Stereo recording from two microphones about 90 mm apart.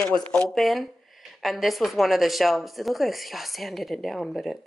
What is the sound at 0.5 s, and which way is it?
Speech, centre (ahead or behind).